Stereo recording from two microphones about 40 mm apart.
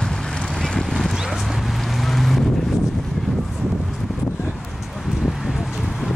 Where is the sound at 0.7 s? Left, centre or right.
Centre.